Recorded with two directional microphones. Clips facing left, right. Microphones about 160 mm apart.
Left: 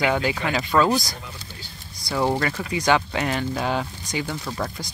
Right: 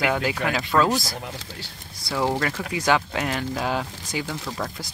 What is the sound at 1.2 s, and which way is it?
Speech, 85° right.